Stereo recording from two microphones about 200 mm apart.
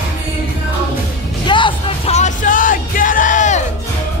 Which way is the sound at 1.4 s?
25° left (ahead or behind).